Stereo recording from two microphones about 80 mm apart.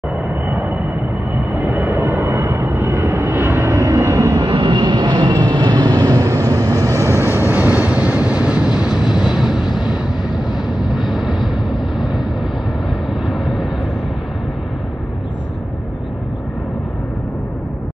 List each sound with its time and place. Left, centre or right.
0.5 s vehicle: right
4.4 s vehicle: right; by 9.9 s centre
11.0 s vehicle: centre
13.3 s vehicle: centre